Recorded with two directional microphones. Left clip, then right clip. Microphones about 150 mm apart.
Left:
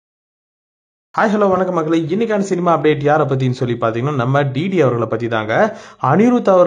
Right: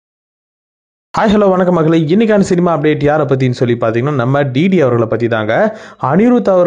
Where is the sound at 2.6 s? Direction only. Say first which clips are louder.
Right 2 dB; 35° right (ahead or behind).